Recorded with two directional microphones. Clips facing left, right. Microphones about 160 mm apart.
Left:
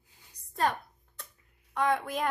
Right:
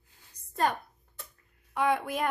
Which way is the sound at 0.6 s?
Centre (ahead or behind).